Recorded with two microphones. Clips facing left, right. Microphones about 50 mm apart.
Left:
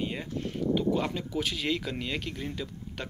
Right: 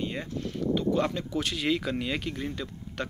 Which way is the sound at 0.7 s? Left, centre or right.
Centre.